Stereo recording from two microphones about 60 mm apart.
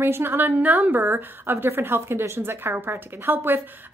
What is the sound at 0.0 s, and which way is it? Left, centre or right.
Speech, right.